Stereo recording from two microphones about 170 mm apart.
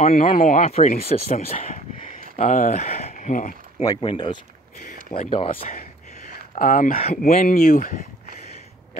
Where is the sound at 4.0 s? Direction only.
30° left (ahead or behind).